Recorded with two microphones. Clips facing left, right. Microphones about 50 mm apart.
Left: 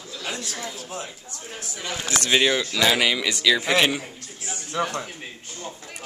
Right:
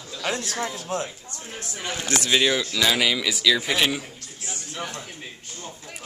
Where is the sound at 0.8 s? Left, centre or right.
Right.